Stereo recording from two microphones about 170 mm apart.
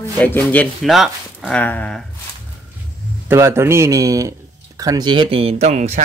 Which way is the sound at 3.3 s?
15° right (ahead or behind).